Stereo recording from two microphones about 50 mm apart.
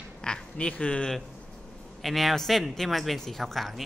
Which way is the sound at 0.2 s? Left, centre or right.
Centre.